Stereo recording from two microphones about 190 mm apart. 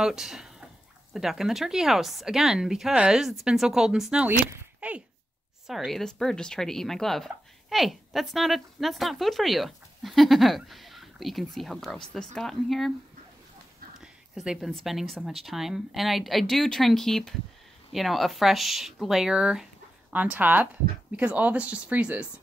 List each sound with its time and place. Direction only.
0.0 s speech: centre (ahead or behind)
14.0 s speech: 5° right (ahead or behind)